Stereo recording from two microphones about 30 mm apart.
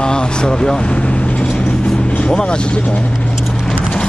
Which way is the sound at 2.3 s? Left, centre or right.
Left.